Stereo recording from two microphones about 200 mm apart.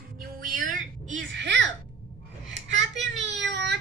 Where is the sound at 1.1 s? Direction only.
60° right (ahead or behind).